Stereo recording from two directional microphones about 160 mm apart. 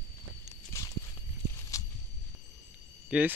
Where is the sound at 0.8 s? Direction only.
15° left (ahead or behind).